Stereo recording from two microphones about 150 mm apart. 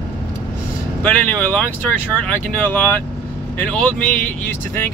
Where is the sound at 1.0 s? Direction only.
10° left (ahead or behind).